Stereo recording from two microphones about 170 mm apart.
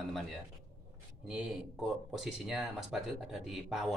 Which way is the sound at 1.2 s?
5° right (ahead or behind).